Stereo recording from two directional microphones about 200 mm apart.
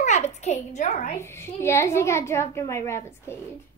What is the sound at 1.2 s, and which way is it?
A woman's voice, 10° left (ahead or behind).